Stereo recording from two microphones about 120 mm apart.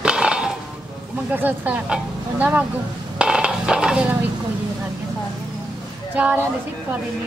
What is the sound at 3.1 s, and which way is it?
Dishes, 5° right (ahead or behind).